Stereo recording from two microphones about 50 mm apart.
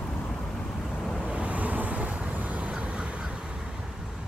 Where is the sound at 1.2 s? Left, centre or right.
Right.